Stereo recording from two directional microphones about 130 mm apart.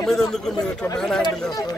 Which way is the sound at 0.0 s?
5° left (ahead or behind).